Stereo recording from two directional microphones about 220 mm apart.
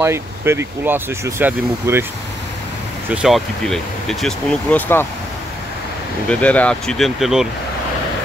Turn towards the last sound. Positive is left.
turn(degrees=0)  # may be behind; listen again after turning